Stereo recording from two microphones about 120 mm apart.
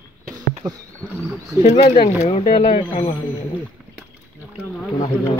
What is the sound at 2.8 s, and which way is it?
Speech, 45° left (ahead or behind).